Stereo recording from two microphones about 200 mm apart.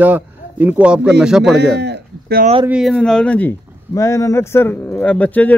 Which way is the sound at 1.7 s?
55° right (ahead or behind).